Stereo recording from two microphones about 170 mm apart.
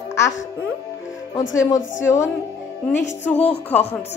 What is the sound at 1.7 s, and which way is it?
Speech, 15° left (ahead or behind).